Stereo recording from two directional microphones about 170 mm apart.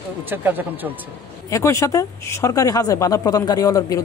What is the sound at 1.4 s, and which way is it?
Speech, 15° left (ahead or behind).